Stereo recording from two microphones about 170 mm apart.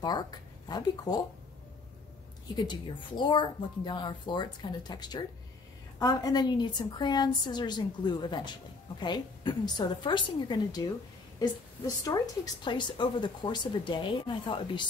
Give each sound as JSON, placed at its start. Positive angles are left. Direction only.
{"t": 0.0, "sound": "speech", "side_deg": 25}
{"t": 2.5, "sound": "a woman's voice", "side_deg": 25}